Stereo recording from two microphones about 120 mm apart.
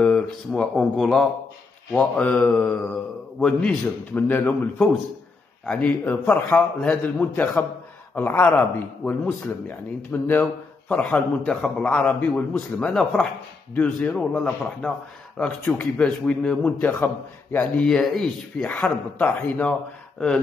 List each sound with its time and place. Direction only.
0.0 s a man's voice: 5° left (ahead or behind)
5.7 s a man's voice: 10° left (ahead or behind)
17.8 s a man's voice: 5° left (ahead or behind)